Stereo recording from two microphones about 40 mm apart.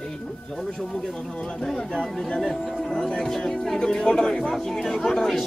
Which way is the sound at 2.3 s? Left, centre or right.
Centre.